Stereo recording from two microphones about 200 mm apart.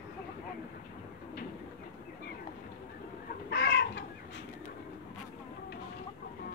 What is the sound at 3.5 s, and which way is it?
Chicken, 55° left (ahead or behind).